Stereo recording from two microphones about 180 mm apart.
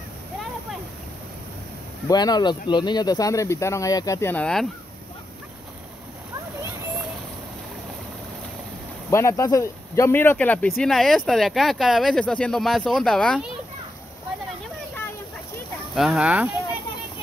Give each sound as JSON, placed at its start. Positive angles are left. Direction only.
{"t": 2.0, "sound": "speech", "side_deg": 20}
{"t": 9.1, "sound": "speech", "side_deg": 15}
{"t": 15.9, "sound": "speech", "side_deg": 0}